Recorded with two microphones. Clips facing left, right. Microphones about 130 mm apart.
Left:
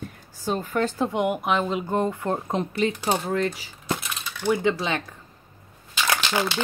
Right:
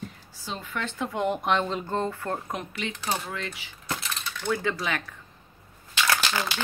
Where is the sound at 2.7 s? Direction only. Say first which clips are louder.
Left 8 dB; 35° left (ahead or behind).